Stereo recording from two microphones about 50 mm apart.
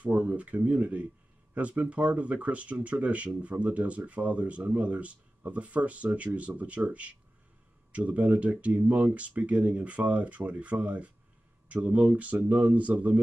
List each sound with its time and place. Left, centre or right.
0.0 s speech: right